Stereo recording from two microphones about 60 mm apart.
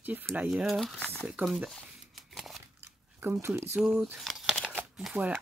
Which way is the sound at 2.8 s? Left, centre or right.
Right.